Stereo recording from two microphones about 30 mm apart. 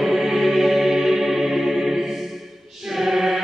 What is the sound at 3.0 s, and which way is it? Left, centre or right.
Chant, centre.